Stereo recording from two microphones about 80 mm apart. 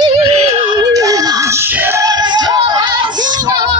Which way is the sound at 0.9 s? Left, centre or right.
Right.